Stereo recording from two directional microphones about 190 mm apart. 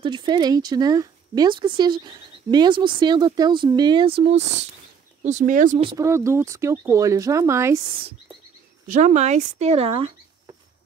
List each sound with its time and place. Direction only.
0.0 s speech: 25° right (ahead or behind); by 5.8 s 45° right (ahead or behind)
5.8 s speech: 25° right (ahead or behind)
6.0 s speech: 15° right (ahead or behind)
8.8 s speech: 40° right (ahead or behind)